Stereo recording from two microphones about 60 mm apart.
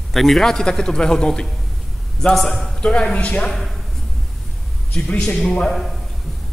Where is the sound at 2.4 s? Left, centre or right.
Centre.